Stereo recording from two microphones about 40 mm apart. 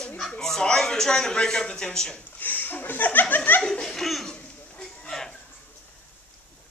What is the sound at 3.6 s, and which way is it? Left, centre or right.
Laughter, centre.